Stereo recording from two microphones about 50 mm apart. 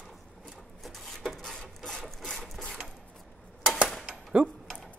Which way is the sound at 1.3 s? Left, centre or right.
Centre.